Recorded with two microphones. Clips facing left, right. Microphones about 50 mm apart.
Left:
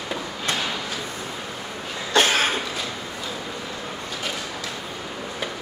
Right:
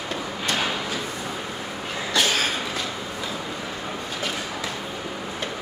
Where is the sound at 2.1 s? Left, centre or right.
Left.